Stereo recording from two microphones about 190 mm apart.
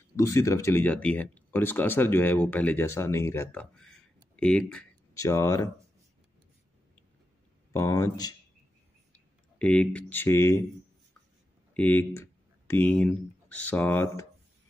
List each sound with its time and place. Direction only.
0.1 s speech: 15° left (ahead or behind)
7.7 s speech: 15° left (ahead or behind)
9.6 s speech: 5° left (ahead or behind)
11.7 s speech: 10° left (ahead or behind)